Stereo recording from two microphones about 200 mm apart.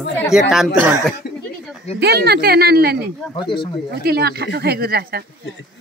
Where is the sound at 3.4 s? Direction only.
25° left (ahead or behind).